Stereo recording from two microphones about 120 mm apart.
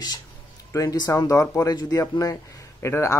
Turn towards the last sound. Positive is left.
turn(degrees=20)  # may be behind; listen again after turning